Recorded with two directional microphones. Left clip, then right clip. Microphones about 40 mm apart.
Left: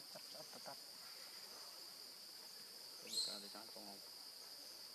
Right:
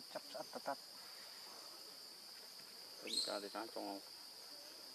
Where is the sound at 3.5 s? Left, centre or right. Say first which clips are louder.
Right 8 dB; right.